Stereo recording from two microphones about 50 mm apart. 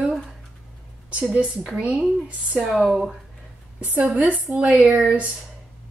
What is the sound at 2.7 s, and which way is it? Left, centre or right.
Speech, centre.